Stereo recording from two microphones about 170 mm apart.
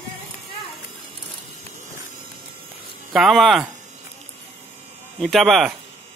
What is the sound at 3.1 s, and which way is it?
Speech, centre (ahead or behind).